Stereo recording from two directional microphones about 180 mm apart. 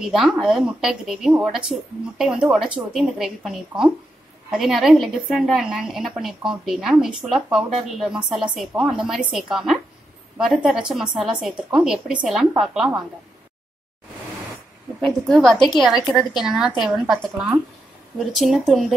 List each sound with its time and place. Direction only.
0.0 s a woman's voice: centre (ahead or behind)
15.0 s a woman's voice: centre (ahead or behind)